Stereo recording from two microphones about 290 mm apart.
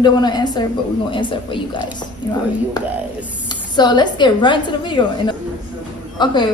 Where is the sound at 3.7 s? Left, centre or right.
Centre.